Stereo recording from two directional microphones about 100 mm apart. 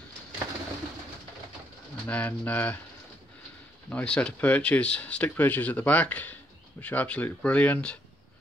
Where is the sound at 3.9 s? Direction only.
10° left (ahead or behind).